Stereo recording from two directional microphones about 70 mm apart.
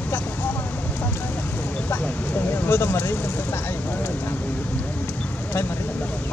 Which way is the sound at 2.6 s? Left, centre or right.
Left.